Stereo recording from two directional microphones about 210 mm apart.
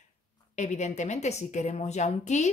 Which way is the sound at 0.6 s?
35° left (ahead or behind).